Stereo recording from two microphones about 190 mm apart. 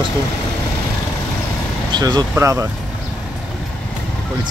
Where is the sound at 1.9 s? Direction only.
20° right (ahead or behind).